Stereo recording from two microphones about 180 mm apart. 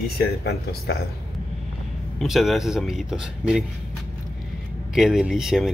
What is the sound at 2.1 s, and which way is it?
Speech, centre (ahead or behind).